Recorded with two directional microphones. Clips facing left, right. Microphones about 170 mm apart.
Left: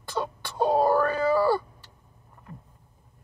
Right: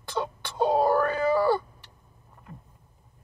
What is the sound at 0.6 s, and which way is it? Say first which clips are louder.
Wail: left 1 dB; 20° right (ahead or behind).